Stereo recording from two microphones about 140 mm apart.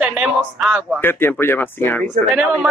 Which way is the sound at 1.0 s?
15° left (ahead or behind).